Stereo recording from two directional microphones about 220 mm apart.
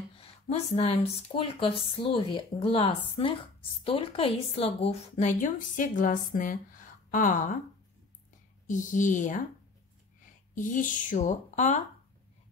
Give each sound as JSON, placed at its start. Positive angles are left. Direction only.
{"t": 0.1, "sound": "a woman's voice", "side_deg": 25}
{"t": 8.6, "sound": "a woman's voice", "side_deg": 35}
{"t": 10.5, "sound": "a woman's voice", "side_deg": 35}